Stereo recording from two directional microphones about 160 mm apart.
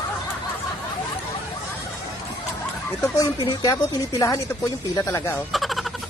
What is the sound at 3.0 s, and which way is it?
Speech, 20° left (ahead or behind).